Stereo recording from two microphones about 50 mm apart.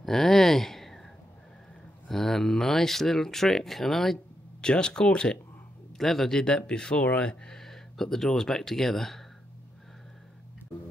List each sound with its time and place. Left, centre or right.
0.0 s a sound: centre
2.0 s speech: centre
4.6 s speech: centre
5.9 s speech: centre